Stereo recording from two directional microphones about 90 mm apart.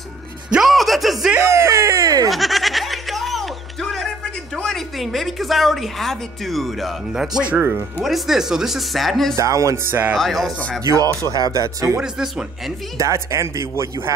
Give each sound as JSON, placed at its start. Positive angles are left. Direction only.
{"t": 0.5, "sound": "music", "side_deg": -5}
{"t": 1.4, "sound": "speech", "side_deg": -30}
{"t": 2.2, "sound": "music", "side_deg": 0}
{"t": 4.6, "sound": "a woman's voice", "side_deg": 5}
{"t": 9.4, "sound": "speech", "side_deg": -35}
{"t": 10.1, "sound": "a woman's voice", "side_deg": 0}
{"t": 10.8, "sound": "speech", "side_deg": -40}
{"t": 12.0, "sound": "speech", "side_deg": -5}
{"t": 12.9, "sound": "speech", "side_deg": -35}